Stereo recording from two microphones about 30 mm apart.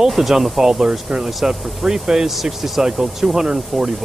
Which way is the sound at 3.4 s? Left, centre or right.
Right.